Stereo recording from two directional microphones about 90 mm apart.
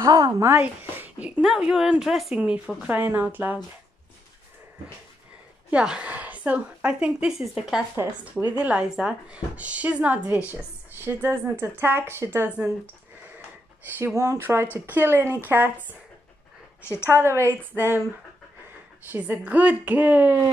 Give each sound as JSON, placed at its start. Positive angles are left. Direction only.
{"t": 0.4, "sound": "speech", "side_deg": -25}
{"t": 1.4, "sound": "a woman's voice", "side_deg": -5}
{"t": 2.4, "sound": "speech", "side_deg": -15}
{"t": 5.7, "sound": "speech", "side_deg": -10}
{"t": 7.9, "sound": "speech", "side_deg": -30}
{"t": 8.5, "sound": "speech", "side_deg": -10}
{"t": 12.4, "sound": "speech", "side_deg": -15}
{"t": 13.9, "sound": "speech", "side_deg": -30}
{"t": 16.8, "sound": "a woman's voice", "side_deg": 25}
{"t": 17.1, "sound": "speech", "side_deg": -30}
{"t": 19.1, "sound": "speech", "side_deg": -20}